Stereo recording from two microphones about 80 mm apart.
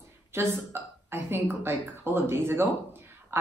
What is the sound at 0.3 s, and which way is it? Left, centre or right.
A woman's voice, right.